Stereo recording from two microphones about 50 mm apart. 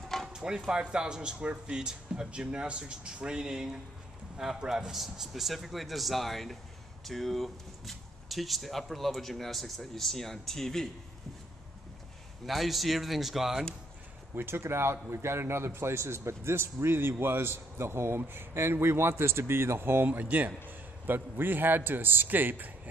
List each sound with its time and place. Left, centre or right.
0.3 s music: centre
0.7 s speech: centre
12.4 s speech: centre
14.3 s speech: right
20.1 s a man's voice: right